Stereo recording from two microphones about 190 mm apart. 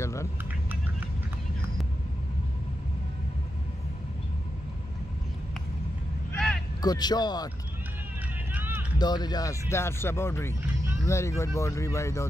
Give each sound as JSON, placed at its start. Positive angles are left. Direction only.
{"t": 0.0, "sound": "a sound", "side_deg": 15}
{"t": 6.8, "sound": "speech", "side_deg": 20}
{"t": 8.5, "sound": "run", "side_deg": -10}
{"t": 8.9, "sound": "speech", "side_deg": 20}